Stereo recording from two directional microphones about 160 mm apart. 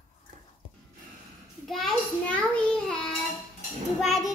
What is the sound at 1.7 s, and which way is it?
Child singing, centre (ahead or behind).